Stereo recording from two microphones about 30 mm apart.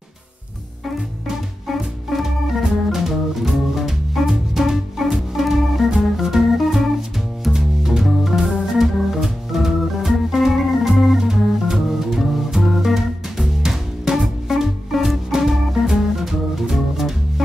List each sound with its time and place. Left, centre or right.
1.7 s music: centre
2.2 s organ: centre
7.5 s music: centre
8.0 s music: centre
8.7 s organ: centre
12.6 s music: centre
14.1 s music: right
14.5 s music: centre